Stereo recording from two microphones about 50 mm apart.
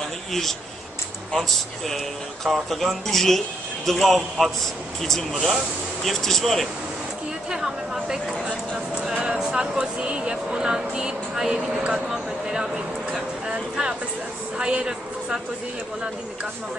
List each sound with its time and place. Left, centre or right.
0.3 s speech: centre
2.4 s speech: centre
7.5 s speech: centre
8.5 s speech: right